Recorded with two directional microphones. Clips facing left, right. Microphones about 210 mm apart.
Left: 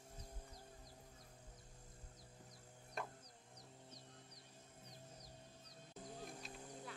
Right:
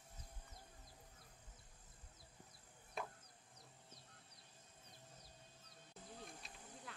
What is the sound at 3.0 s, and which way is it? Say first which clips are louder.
Chicken: even; centre (ahead or behind).